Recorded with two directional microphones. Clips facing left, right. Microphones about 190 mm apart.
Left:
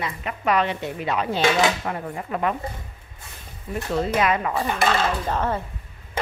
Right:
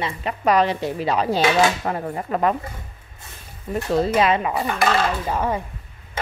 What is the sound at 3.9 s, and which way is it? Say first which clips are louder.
Speech: right 3 dB; 30° right (ahead or behind).